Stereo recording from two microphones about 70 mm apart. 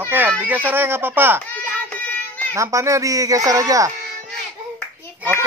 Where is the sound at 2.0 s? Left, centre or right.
Left.